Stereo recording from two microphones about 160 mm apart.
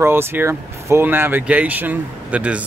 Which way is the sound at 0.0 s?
15° right (ahead or behind).